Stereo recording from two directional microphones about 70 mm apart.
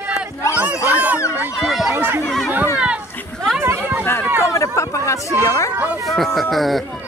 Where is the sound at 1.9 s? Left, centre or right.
Right.